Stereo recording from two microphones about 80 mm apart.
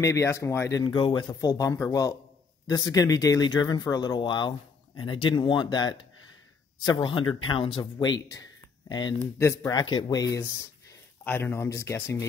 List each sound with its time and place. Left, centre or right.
0.0 s speech: left
0.8 s a man's voice: left
7.8 s speech: left
9.4 s speech: left
9.7 s speech: left
11.2 s speech: left